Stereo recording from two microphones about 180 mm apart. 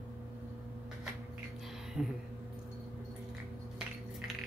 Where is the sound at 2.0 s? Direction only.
Centre (ahead or behind).